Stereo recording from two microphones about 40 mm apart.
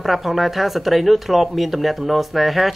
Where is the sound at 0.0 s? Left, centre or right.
Centre.